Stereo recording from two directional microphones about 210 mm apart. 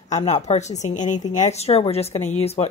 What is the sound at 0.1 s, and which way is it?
A woman's voice, 35° left (ahead or behind).